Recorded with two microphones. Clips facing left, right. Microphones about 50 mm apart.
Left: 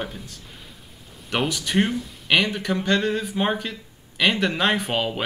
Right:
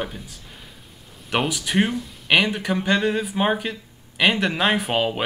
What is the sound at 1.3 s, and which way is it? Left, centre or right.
Speech, centre.